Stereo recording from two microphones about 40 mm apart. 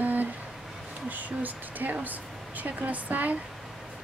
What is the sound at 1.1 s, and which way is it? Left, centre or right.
Speech, right.